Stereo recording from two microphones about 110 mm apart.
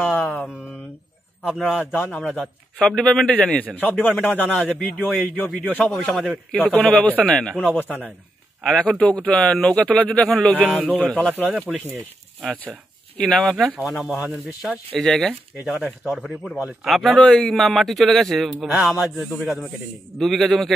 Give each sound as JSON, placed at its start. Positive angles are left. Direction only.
{"t": 0.0, "sound": "mantra", "side_deg": 15}
{"t": 2.0, "sound": "speech", "side_deg": 15}
{"t": 2.3, "sound": "speech", "side_deg": 0}
{"t": 6.5, "sound": "speech", "side_deg": 10}
{"t": 11.4, "sound": "speech", "side_deg": -10}
{"t": 13.2, "sound": "a man's voice", "side_deg": 5}